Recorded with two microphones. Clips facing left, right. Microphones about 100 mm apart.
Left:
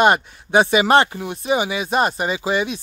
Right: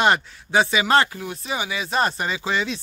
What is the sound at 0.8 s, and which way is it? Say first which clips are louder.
Speech: left 4 dB; 25° left (ahead or behind).